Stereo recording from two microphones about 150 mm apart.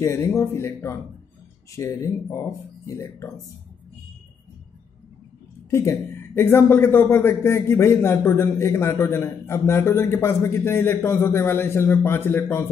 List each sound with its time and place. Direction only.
0.0 s speech: 20° left (ahead or behind)
5.7 s speech: 20° left (ahead or behind)